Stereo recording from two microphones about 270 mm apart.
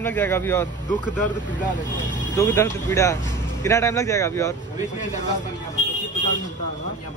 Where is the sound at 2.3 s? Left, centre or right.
Centre.